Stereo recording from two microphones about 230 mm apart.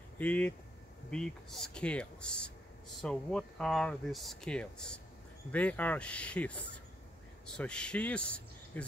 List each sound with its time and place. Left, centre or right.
0.2 s speech: centre